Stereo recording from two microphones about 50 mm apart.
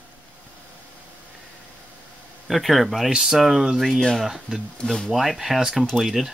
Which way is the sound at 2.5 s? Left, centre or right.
Centre.